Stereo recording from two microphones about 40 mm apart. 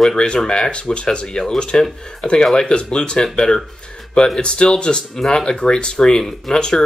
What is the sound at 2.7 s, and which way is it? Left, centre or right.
Speech, left.